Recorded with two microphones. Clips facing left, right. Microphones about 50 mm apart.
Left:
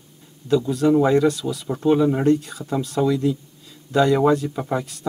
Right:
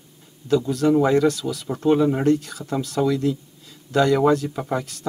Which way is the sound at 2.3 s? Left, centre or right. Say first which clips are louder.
Left 1 dB; centre.